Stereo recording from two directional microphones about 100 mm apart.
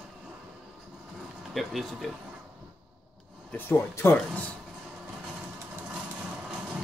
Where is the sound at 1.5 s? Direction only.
Centre (ahead or behind).